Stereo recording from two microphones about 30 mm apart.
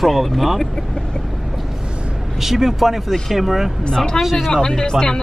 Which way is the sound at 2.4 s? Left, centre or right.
Centre.